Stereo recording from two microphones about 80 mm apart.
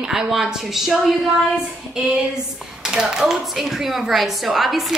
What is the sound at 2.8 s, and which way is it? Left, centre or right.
A woman's voice, centre.